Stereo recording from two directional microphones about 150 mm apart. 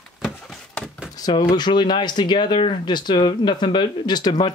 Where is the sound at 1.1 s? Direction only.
30° left (ahead or behind).